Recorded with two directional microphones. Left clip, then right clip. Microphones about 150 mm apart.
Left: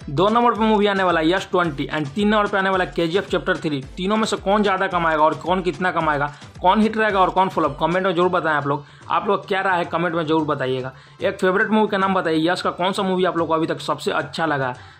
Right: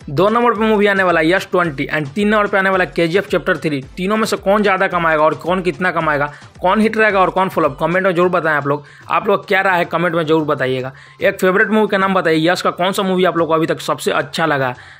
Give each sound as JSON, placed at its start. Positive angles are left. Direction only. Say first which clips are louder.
{"t": 0.1, "sound": "a man's voice", "louder": "right 4 dB", "side_deg": -10}
{"t": 0.4, "sound": "a man's voice", "louder": "right 3 dB", "side_deg": 0}
{"t": 0.7, "sound": "speech", "louder": "right 5 dB", "side_deg": -10}